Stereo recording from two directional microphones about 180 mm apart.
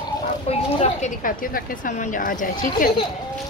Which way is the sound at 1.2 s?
50° left (ahead or behind).